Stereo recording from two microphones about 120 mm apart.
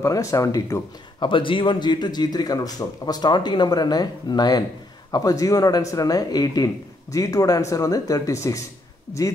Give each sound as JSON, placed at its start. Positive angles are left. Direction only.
{"t": 0.0, "sound": "speech", "side_deg": 25}
{"t": 1.2, "sound": "speech", "side_deg": 45}